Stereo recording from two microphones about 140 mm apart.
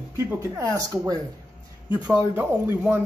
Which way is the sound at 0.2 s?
20° right (ahead or behind).